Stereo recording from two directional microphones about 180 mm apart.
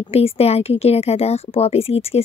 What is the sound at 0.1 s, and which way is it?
Speech, 35° left (ahead or behind).